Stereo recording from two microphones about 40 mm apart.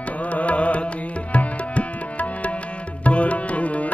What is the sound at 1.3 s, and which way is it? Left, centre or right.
Music, left.